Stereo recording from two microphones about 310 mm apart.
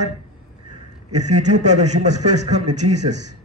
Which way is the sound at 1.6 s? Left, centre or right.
Right.